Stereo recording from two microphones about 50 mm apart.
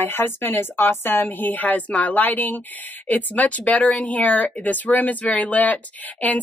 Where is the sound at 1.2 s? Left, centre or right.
Left.